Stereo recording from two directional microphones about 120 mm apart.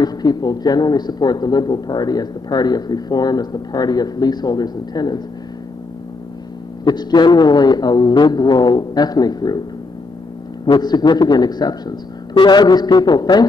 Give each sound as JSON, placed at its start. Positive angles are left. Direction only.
{"t": 0.0, "sound": "speech", "side_deg": 35}
{"t": 6.8, "sound": "speech", "side_deg": 35}
{"t": 10.6, "sound": "speech", "side_deg": 35}